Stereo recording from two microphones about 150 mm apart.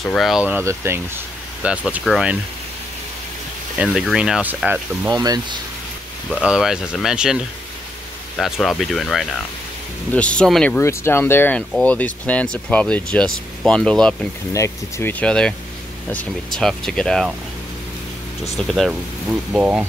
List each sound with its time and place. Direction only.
0.0 s speech: centre (ahead or behind)
3.7 s speech: 5° right (ahead or behind)
5.1 s speech: 25° right (ahead or behind)
6.3 s speech: 5° right (ahead or behind)
10.8 s speech: 15° left (ahead or behind)
14.5 s speech: 20° left (ahead or behind); by 17.4 s centre (ahead or behind)
18.7 s speech: centre (ahead or behind)